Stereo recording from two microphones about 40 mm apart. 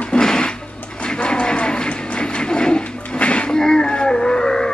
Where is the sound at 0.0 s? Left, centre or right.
Centre.